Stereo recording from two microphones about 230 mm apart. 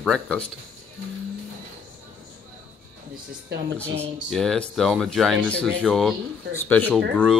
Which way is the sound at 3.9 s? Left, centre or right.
Right.